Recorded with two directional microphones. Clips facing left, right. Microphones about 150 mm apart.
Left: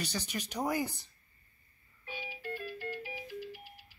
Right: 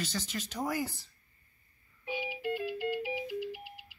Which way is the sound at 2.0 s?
15° right (ahead or behind).